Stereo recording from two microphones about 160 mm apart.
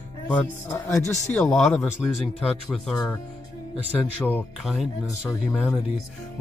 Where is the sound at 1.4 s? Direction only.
Centre (ahead or behind).